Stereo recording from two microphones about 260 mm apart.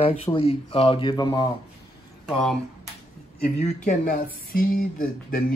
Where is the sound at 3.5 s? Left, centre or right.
Left.